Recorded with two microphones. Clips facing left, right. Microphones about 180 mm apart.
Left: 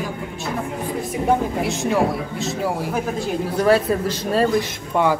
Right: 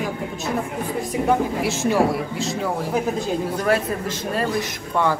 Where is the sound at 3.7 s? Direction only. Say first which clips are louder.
Left 5 dB; 30° left (ahead or behind).